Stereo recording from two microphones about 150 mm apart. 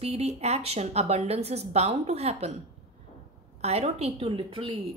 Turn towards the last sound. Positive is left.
turn(degrees=-35)  # may be behind; listen again after turning